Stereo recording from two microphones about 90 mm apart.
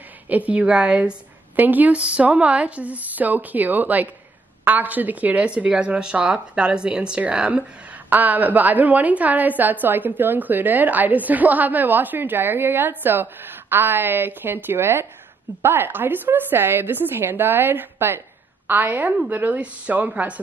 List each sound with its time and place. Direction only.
0.5 s a woman's voice: 15° right (ahead or behind)